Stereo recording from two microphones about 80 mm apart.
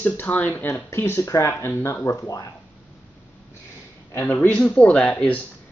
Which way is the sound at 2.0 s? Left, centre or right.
Left.